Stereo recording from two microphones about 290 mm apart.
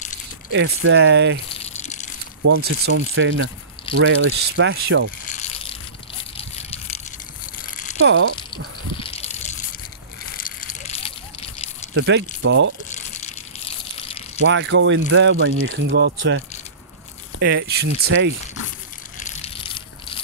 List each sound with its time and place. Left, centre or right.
0.5 s speech: right
1.5 s drip: left
2.6 s speech: right
5.2 s mechanisms: left
6.3 s a sound: left
8.0 s speech: right
9.0 s water: left
10.3 s a sound: left
11.9 s speech: right
12.9 s gush: left
14.0 s a sound: centre
14.4 s speech: right
19.1 s crushing: left